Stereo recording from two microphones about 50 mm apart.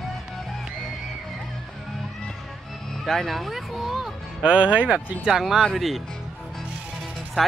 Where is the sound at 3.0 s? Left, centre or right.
Centre.